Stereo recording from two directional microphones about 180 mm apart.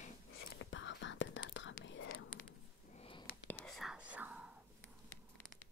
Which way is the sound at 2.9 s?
30° left (ahead or behind).